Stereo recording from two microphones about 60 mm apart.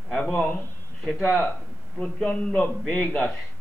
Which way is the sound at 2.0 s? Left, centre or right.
Left.